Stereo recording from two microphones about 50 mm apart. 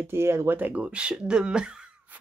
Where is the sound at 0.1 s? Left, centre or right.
Right.